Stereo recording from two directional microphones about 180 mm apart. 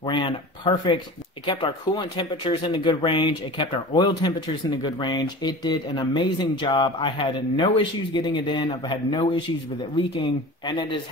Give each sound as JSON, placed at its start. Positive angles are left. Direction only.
{"t": 0.0, "sound": "speech", "side_deg": 25}